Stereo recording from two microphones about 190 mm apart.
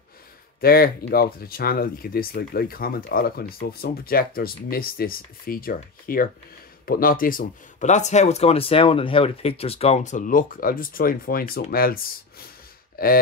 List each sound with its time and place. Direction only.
0.6 s speech: 50° left (ahead or behind)